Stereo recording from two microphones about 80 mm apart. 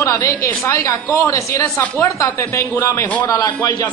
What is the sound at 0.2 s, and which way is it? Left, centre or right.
A woman's voice, left.